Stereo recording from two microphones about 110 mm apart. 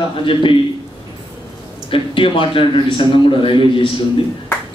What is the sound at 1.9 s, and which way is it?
A man's voice, 55° left (ahead or behind).